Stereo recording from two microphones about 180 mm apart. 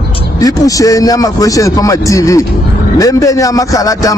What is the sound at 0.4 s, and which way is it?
Speech, 20° left (ahead or behind).